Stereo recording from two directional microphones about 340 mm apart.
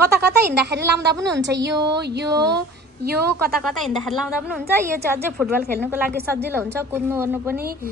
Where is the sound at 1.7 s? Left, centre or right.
Centre.